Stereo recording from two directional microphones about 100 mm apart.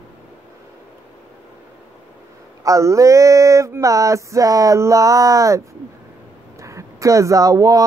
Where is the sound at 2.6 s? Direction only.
30° right (ahead or behind).